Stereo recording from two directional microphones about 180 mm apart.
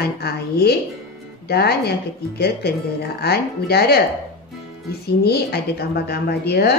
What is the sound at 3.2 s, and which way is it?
Speech, 60° left (ahead or behind).